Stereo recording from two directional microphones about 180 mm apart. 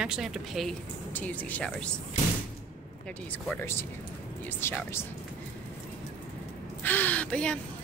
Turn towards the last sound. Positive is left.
turn(degrees=5)  # may be behind; listen again after turning